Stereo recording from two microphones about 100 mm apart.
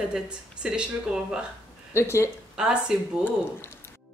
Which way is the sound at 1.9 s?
25° left (ahead or behind).